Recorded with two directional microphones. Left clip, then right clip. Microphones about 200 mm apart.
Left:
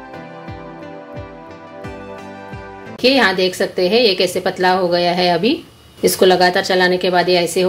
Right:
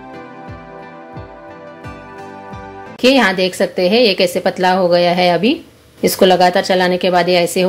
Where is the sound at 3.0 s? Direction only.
20° right (ahead or behind).